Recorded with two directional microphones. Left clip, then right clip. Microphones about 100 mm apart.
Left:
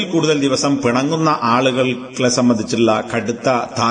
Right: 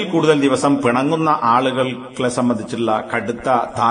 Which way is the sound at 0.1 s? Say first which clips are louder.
Right 2 dB; centre (ahead or behind).